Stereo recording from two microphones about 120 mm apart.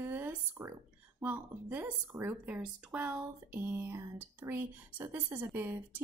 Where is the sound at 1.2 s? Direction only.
15° right (ahead or behind).